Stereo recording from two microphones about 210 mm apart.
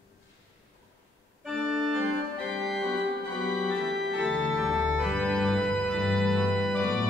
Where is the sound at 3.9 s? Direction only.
55° right (ahead or behind).